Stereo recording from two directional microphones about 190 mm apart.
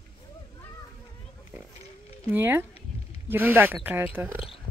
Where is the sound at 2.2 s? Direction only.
10° right (ahead or behind).